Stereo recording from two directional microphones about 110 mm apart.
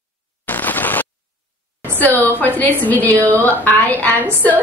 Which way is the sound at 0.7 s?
15° left (ahead or behind).